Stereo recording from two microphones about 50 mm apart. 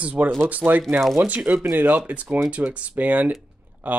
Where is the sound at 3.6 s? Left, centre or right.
Right.